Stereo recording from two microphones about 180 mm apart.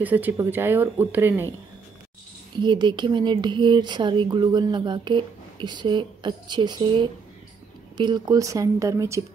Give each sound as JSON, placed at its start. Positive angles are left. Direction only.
{"t": 0.0, "sound": "speech", "side_deg": -10}
{"t": 2.6, "sound": "speech", "side_deg": -25}